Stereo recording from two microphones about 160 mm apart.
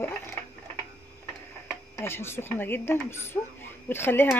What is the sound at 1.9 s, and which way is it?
Speech, 15° left (ahead or behind).